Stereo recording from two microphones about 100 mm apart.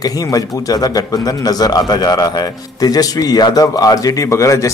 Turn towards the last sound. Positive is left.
turn(degrees=30)  # may be behind; listen again after turning